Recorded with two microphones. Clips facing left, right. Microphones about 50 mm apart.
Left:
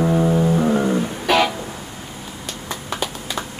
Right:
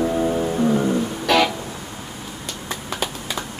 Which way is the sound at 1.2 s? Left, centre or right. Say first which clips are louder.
Even; centre.